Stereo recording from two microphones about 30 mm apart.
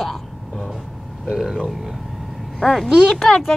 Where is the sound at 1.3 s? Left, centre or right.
Centre.